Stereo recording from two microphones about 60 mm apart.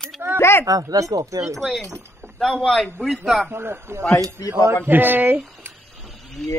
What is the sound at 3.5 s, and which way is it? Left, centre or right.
Speech, right.